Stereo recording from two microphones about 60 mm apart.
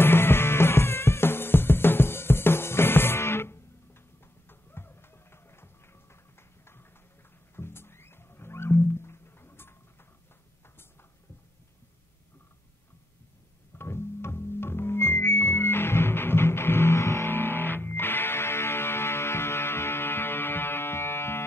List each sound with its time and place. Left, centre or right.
0.0 s music: left
6.6 s a sound: left
7.5 s music: left
13.7 s music: left
17.3 s music: left